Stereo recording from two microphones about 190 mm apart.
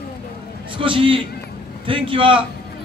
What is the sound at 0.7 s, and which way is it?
A man's voice, 30° right (ahead or behind).